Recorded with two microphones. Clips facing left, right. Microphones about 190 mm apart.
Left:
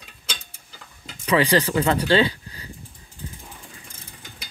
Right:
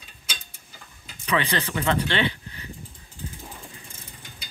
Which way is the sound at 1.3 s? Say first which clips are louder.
Left 6 dB; 35° left (ahead or behind).